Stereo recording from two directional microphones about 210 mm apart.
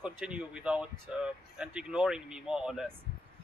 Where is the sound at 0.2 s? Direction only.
5° right (ahead or behind).